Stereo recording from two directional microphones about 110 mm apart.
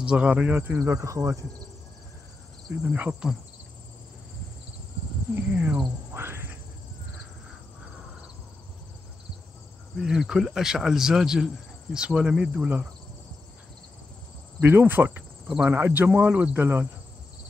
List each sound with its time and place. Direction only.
0.0 s speech: 10° right (ahead or behind); by 1.4 s 30° right (ahead or behind)
2.8 s speech: 15° right (ahead or behind)
5.3 s speech: 15° right (ahead or behind)
6.1 s insect: 20° right (ahead or behind)
9.9 s a man's voice: 5° right (ahead or behind)
14.6 s cricket: 20° right (ahead or behind)
15.4 s speech: 10° right (ahead or behind)